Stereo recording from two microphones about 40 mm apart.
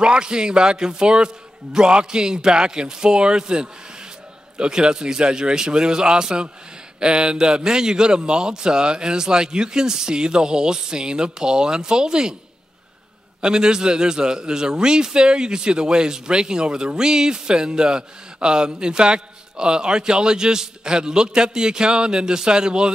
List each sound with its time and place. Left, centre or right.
0.0 s speech: right
13.4 s speech: centre